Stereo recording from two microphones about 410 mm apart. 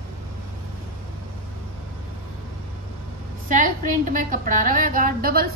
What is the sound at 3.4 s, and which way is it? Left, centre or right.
A woman's voice, centre.